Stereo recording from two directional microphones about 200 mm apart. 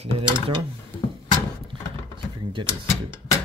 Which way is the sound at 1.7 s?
25° right (ahead or behind).